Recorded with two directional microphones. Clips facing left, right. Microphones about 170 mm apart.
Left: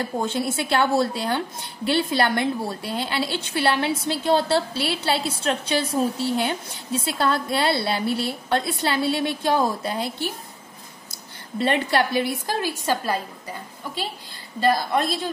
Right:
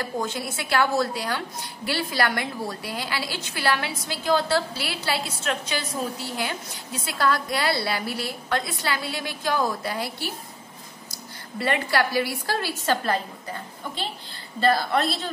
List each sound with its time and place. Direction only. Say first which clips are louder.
0.0 s a woman's voice: left 4 dB; 25° left (ahead or behind)
11.5 s a woman's voice: left 3 dB; 25° left (ahead or behind)